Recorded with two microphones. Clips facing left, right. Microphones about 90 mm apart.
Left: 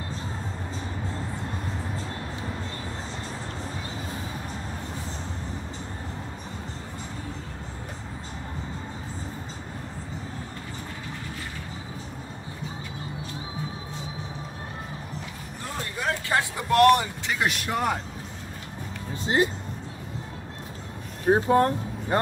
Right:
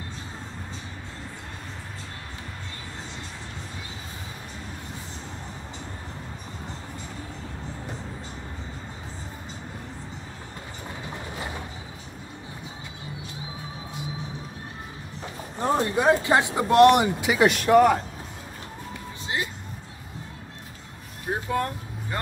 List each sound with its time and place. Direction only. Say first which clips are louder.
15.6 s speech: right 10 dB; 30° right (ahead or behind)
17.2 s speech: right 6 dB; 5° right (ahead or behind)
19.2 s music: left 7 dB; 35° left (ahead or behind)
21.3 s speech: left 7 dB; 40° left (ahead or behind)